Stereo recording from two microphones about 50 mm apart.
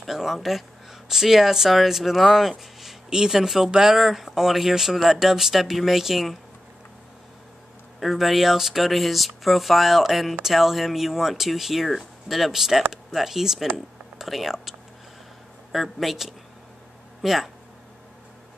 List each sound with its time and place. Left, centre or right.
0.0 s speech: centre
8.0 s speech: centre